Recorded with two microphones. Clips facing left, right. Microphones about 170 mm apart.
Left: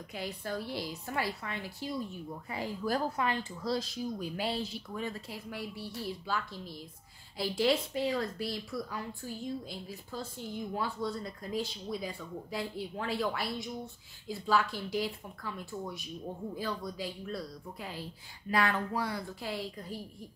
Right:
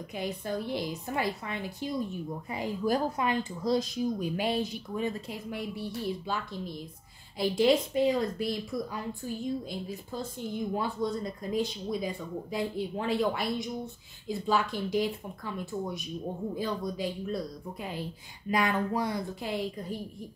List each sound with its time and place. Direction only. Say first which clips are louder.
0.1 s a woman's voice: right 4 dB; 20° right (ahead or behind)